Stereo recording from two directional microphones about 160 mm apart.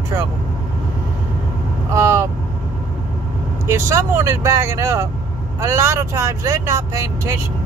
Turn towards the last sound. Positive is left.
turn(degrees=-20)  # may be behind; listen again after turning